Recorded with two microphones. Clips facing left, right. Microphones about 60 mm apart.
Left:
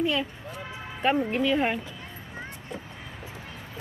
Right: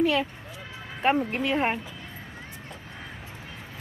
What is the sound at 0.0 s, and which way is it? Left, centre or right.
Speech, right.